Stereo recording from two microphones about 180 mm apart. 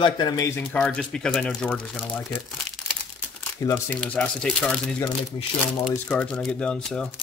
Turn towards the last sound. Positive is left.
turn(degrees=5)  # may be behind; listen again after turning